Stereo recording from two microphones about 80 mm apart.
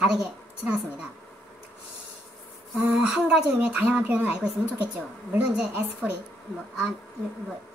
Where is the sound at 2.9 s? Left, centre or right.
Centre.